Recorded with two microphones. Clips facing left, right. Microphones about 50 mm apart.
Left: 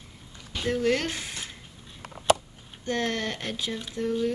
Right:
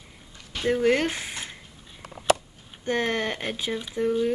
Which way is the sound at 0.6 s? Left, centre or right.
Centre.